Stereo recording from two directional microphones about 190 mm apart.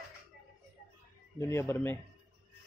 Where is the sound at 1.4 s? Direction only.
15° left (ahead or behind).